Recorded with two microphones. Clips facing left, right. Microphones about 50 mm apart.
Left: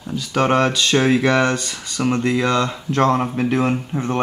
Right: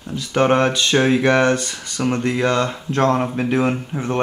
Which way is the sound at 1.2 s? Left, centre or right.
Right.